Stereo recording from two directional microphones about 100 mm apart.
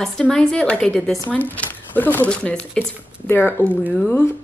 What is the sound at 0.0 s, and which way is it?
Speech, 5° left (ahead or behind).